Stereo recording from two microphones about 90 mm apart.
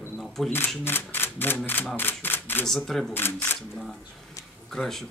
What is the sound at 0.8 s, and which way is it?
Speech, 25° left (ahead or behind).